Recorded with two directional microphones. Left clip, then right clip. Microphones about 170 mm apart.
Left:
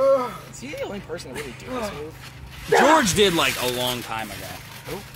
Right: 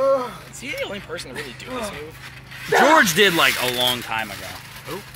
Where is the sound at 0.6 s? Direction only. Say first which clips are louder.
Right 4 dB; 50° left (ahead or behind).